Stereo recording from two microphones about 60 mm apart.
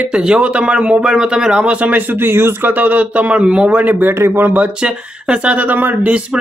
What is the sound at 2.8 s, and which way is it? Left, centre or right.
Speech, right.